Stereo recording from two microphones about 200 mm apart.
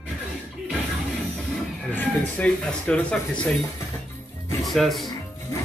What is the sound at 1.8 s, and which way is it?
Speech, 10° left (ahead or behind).